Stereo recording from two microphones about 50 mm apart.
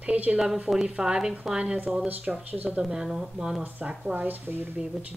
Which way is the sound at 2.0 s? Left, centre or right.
Right.